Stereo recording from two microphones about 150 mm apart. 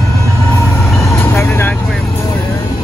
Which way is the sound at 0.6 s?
Centre (ahead or behind).